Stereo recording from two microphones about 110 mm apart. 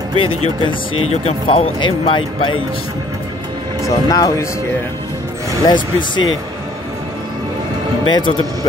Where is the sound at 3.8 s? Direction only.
30° left (ahead or behind).